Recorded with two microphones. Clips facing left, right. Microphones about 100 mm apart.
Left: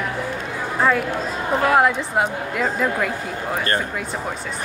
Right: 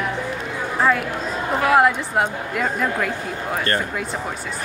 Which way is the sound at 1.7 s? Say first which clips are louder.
Right 3 dB; centre (ahead or behind).